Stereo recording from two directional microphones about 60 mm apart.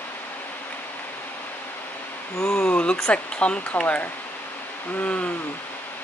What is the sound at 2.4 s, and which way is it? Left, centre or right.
Speech, centre.